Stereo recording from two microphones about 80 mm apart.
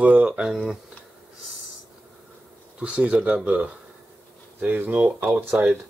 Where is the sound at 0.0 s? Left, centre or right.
Centre.